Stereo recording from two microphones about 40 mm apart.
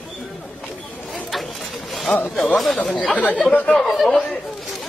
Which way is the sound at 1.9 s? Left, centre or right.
Centre.